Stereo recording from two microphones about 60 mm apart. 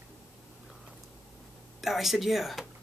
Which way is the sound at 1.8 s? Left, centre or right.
Centre.